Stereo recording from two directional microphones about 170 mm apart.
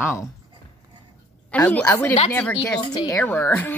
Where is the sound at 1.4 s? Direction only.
10° left (ahead or behind).